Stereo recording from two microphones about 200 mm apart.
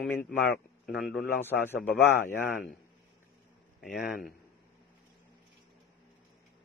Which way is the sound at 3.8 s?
Centre (ahead or behind).